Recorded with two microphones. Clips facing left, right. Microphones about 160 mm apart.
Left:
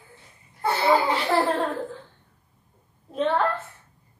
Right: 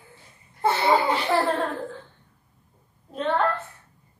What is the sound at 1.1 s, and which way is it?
Speech, centre (ahead or behind).